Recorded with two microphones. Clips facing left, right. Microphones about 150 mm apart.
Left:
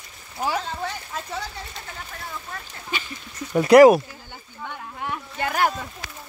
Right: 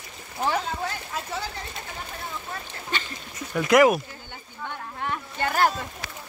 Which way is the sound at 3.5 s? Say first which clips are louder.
Left 7 dB; 35° left (ahead or behind).